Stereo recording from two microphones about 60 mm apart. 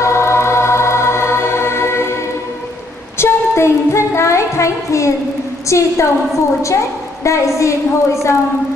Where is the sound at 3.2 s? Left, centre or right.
Left.